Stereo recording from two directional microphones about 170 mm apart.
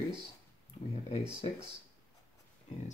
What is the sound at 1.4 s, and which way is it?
Speech, 35° left (ahead or behind).